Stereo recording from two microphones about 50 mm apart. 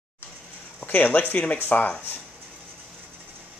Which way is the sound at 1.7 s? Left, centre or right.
Left.